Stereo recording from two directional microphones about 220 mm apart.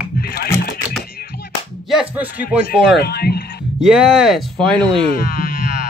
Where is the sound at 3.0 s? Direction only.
45° left (ahead or behind).